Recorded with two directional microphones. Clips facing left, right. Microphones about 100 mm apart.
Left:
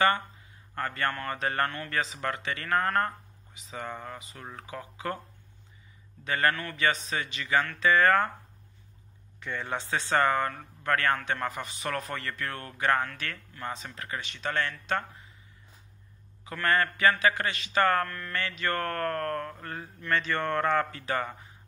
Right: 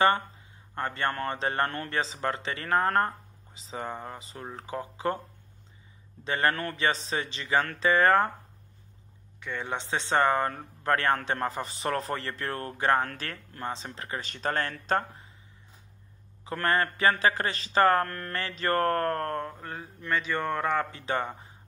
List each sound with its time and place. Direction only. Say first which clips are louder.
0.7 s a man's voice: right 1 dB; 25° right (ahead or behind)
6.2 s speech: even; 25° right (ahead or behind)
6.5 s mantra: right 3 dB; 45° right (ahead or behind)
6.8 s speech: left 1 dB; 30° right (ahead or behind)
9.6 s a man's voice: even; 20° right (ahead or behind); by 15.2 s 35° right (ahead or behind)
16.5 s a man's voice: even; 30° right (ahead or behind)
18.0 s mantra: right 1 dB; 45° right (ahead or behind)
18.3 s a man's voice: right 3 dB; 35° right (ahead or behind); by 21.0 s 10° right (ahead or behind)
21.0 s speech: right 1 dB; 25° right (ahead or behind)